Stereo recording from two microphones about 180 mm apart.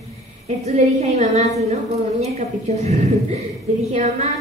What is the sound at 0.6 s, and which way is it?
A woman's voice, 40° right (ahead or behind).